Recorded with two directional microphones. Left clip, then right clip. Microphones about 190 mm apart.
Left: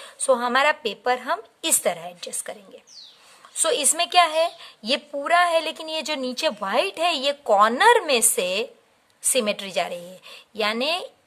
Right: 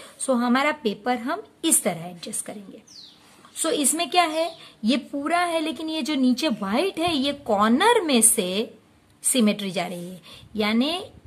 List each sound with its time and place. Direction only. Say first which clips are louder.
0.0 s a woman's voice: left 3 dB; 25° left (ahead or behind)
3.5 s a woman's voice: left 2 dB; 30° left (ahead or behind)